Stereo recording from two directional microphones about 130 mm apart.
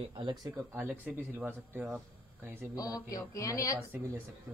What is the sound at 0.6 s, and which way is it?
Speech, 15° right (ahead or behind).